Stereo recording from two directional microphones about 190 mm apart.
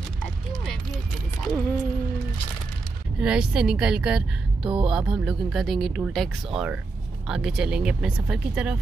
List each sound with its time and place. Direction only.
0.5 s a sound: centre (ahead or behind)
3.2 s speech: 5° right (ahead or behind)
4.6 s music: 25° right (ahead or behind)
4.9 s speech: 5° right (ahead or behind)